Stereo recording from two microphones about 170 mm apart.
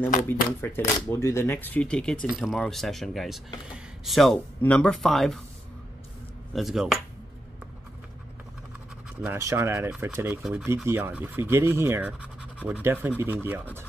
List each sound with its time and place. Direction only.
0.3 s speech: 15° left (ahead or behind)
6.5 s speech: centre (ahead or behind)
9.2 s speech: 15° right (ahead or behind)